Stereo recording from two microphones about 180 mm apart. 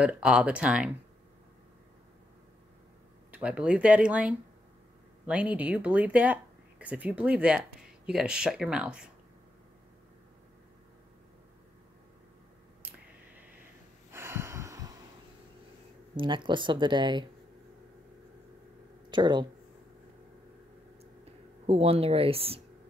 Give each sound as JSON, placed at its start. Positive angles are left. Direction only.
{"t": 0.0, "sound": "speech", "side_deg": -5}
{"t": 3.3, "sound": "speech", "side_deg": -5}
{"t": 14.1, "sound": "gasp", "side_deg": -15}
{"t": 16.2, "sound": "speech", "side_deg": -25}
{"t": 19.0, "sound": "speech", "side_deg": -25}
{"t": 21.6, "sound": "speech", "side_deg": -35}